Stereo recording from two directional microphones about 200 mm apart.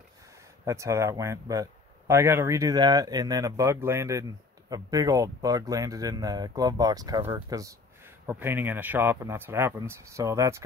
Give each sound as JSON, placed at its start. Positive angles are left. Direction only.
{"t": 0.7, "sound": "a man's voice", "side_deg": -15}